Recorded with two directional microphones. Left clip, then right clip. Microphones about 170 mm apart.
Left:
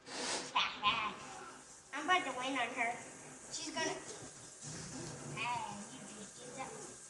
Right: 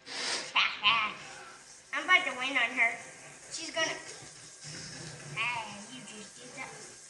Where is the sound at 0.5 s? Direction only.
30° left (ahead or behind).